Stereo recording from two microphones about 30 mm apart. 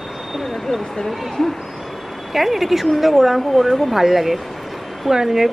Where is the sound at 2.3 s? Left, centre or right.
Centre.